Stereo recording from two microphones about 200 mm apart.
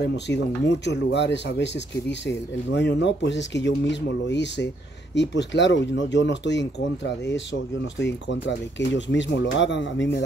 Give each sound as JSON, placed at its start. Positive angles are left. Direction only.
{"t": 0.0, "sound": "speech", "side_deg": 60}